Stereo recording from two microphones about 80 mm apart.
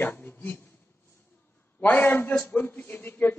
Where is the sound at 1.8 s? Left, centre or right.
Left.